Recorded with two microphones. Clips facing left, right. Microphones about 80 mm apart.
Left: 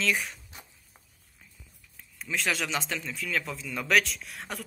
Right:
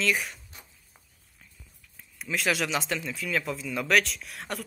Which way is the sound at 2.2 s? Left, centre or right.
Centre.